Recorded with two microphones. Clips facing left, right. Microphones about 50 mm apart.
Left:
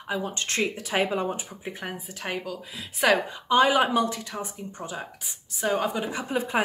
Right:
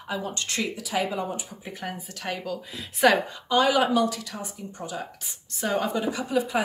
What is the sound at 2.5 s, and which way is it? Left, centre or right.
Speech, centre.